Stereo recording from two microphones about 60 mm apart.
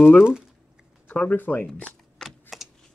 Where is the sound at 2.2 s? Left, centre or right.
Centre.